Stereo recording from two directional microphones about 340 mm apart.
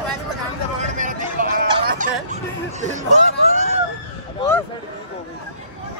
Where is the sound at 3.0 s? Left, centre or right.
Right.